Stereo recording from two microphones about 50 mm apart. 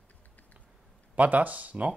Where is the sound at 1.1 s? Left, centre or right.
Right.